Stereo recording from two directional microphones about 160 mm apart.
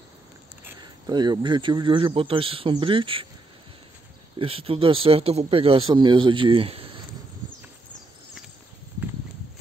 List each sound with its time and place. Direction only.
0.7 s speech: 25° right (ahead or behind)
4.4 s speech: 35° right (ahead or behind)